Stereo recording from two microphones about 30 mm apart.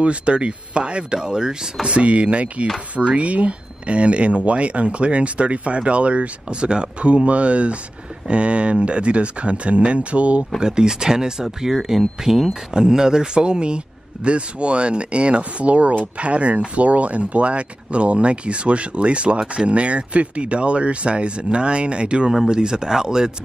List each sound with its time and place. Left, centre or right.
0.0 s speech: right
1.2 s speech: right
1.9 s speech: right
6.5 s speech: right
10.6 s speech: right